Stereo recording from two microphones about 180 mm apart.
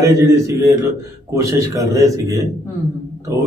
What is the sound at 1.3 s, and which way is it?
A man's voice, 15° right (ahead or behind).